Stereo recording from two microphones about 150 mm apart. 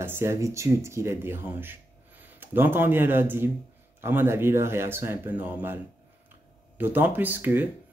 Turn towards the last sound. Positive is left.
turn(degrees=-15)  # may be behind; listen again after turning